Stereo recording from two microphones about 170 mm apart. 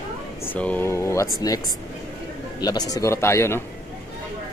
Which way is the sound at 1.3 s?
20° left (ahead or behind).